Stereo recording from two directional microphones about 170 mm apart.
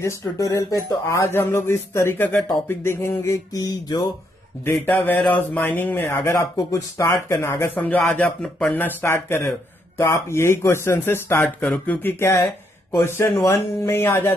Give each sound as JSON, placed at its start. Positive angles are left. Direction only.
{"t": 0.0, "sound": "speech", "side_deg": 20}
{"t": 4.7, "sound": "speech", "side_deg": 10}